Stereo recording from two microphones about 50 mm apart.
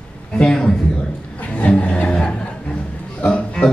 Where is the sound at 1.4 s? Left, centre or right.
Left.